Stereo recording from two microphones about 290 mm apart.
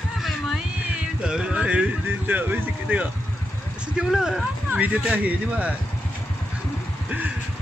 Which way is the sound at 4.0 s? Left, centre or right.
Centre.